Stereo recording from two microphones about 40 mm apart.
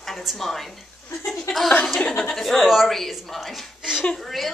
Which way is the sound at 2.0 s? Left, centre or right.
Centre.